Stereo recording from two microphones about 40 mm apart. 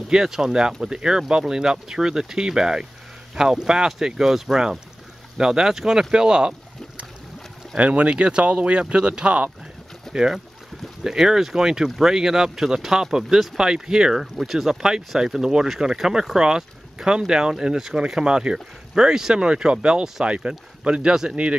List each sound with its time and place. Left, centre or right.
0.1 s speech: centre
7.7 s speech: right
10.1 s speech: centre